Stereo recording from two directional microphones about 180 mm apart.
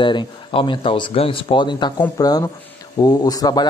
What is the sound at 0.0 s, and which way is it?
A man's voice, 25° left (ahead or behind).